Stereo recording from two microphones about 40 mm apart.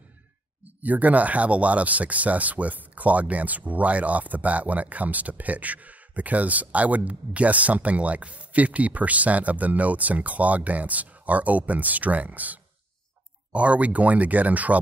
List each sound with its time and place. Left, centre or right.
0.8 s speech: right